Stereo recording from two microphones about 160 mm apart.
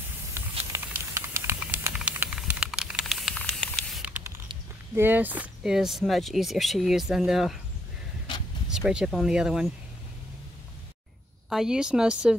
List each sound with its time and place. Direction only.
0.3 s a sound: 15° right (ahead or behind)
2.0 s spray: 5° right (ahead or behind)
4.0 s patter: 10° right (ahead or behind)
4.9 s speech: 10° right (ahead or behind)
8.6 s speech: 5° right (ahead or behind)
11.4 s speech: 5° right (ahead or behind)